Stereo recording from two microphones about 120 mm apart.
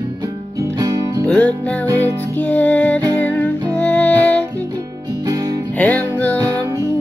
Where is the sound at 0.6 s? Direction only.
30° right (ahead or behind).